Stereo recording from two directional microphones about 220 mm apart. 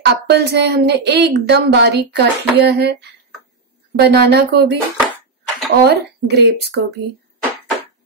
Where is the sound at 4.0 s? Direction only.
45° right (ahead or behind).